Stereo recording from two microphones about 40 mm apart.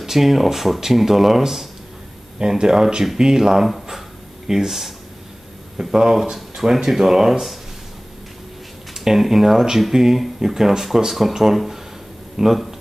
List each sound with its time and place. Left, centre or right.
0.0 s speech: centre
2.3 s speech: centre
8.9 s speech: centre